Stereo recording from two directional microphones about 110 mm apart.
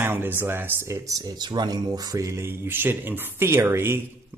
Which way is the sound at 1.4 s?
40° right (ahead or behind).